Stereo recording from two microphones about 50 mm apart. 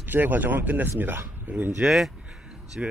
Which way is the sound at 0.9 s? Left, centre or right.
Right.